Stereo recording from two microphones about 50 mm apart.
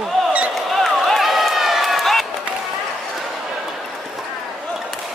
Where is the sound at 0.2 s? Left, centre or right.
Centre.